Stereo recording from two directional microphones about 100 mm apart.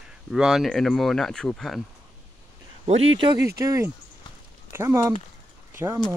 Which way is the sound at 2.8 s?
85° right.